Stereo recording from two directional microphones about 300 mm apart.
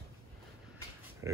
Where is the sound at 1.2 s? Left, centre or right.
Centre.